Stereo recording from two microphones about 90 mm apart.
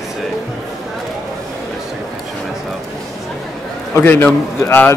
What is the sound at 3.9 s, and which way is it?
Speech, 25° left (ahead or behind).